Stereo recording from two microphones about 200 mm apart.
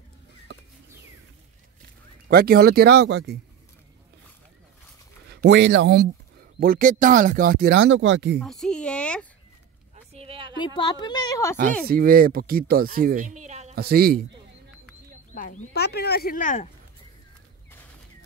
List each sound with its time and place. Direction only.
2.2 s speech: 50° right (ahead or behind)
5.3 s speech: 60° right (ahead or behind)
6.6 s speech: 45° right (ahead or behind); by 8.4 s 65° right (ahead or behind)
8.4 s speech: 5° left (ahead or behind)
10.1 s a sound: 25° right (ahead or behind)
10.6 s a woman's voice: 25° left (ahead or behind)
11.9 s speech: 45° right (ahead or behind)
13.7 s speech: 50° right (ahead or behind)
15.3 s speech: 45° left (ahead or behind)